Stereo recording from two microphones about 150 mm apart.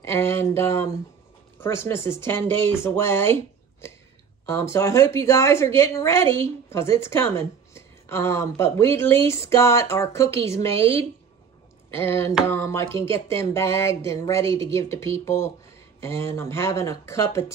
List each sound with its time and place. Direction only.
0.0 s a woman's voice: 20° left (ahead or behind)
10.7 s a woman's voice: 40° right (ahead or behind)
11.9 s a woman's voice: 15° left (ahead or behind)